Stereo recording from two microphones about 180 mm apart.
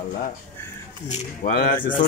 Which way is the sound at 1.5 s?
60° left (ahead or behind).